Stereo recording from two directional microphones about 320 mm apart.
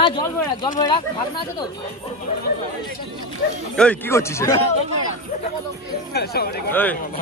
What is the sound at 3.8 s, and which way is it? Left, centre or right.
Speech, centre.